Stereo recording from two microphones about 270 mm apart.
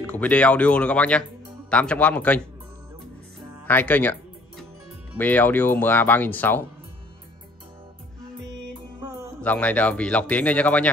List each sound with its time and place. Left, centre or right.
0.0 s speech: centre
3.6 s speech: centre
9.4 s speech: centre